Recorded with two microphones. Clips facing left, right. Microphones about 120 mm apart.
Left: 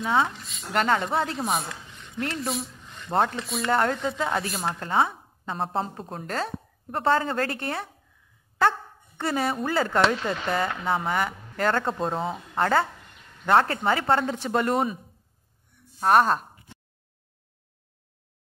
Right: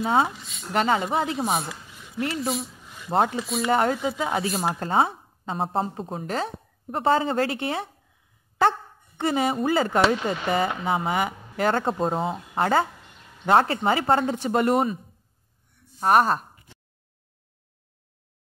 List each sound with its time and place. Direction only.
0.0 s speech: 35° right (ahead or behind)
0.3 s a woman's voice: centre (ahead or behind)
4.7 s speech: 30° right (ahead or behind)
5.6 s speech: 5° right (ahead or behind)
6.2 s a woman's voice: 15° right (ahead or behind)
9.2 s a woman's voice: 15° right (ahead or behind)
16.0 s speech: 5° right (ahead or behind)